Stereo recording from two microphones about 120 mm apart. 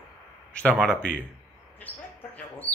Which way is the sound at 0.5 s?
10° left (ahead or behind).